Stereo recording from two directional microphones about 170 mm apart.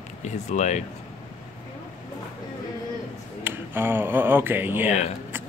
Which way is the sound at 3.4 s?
15° right (ahead or behind).